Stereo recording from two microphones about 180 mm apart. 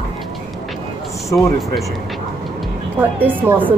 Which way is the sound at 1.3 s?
Centre (ahead or behind).